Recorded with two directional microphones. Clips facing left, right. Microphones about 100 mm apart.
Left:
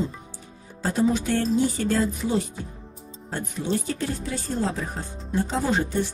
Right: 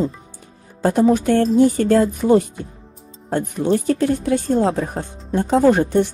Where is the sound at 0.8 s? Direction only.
55° right (ahead or behind).